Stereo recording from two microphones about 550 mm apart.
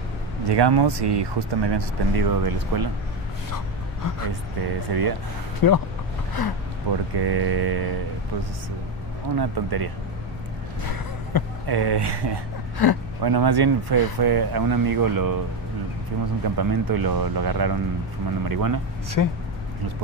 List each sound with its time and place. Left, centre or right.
0.5 s speech: right
4.0 s speech: left
4.6 s speech: right
5.6 s speech: left
7.2 s speech: right
9.4 s speech: right
11.6 s speech: right
12.8 s speech: left
13.2 s speech: right
16.5 s speech: right
19.2 s speech: left